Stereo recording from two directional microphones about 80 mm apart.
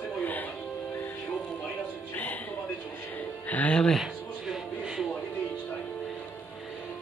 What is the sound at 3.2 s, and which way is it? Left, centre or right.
Music, centre.